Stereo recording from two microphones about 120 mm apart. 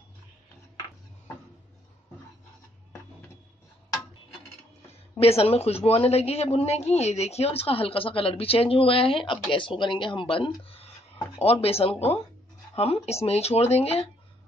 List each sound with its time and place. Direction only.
5.2 s speech: 55° left (ahead or behind)